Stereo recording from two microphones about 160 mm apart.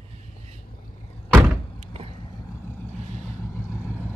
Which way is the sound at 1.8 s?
40° right (ahead or behind).